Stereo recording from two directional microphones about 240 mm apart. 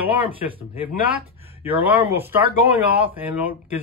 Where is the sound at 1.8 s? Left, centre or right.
Centre.